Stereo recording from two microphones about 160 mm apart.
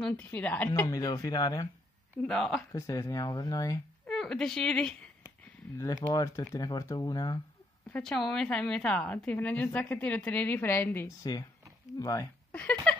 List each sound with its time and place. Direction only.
0.0 s a woman's voice: 10° left (ahead or behind)
0.7 s speech: 20° left (ahead or behind)
2.2 s speech: 5° left (ahead or behind)
2.7 s speech: 20° left (ahead or behind)
4.1 s a woman's voice: 5° left (ahead or behind)
5.8 s speech: 20° left (ahead or behind)
7.9 s a woman's voice: 5° left (ahead or behind); by 12.3 s 20° left (ahead or behind)